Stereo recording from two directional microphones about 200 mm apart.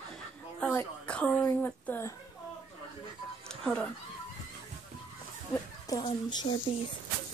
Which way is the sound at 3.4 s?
5° left (ahead or behind).